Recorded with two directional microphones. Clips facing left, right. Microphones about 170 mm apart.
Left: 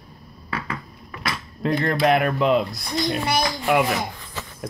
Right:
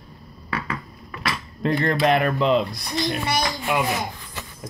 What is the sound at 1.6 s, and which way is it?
Speech, 5° left (ahead or behind).